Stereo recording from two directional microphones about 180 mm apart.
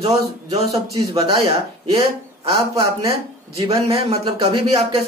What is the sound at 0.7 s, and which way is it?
Speech, 20° right (ahead or behind).